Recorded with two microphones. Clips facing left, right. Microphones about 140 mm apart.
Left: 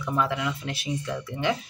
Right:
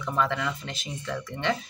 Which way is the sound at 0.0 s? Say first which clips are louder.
Left 1 dB; 10° left (ahead or behind).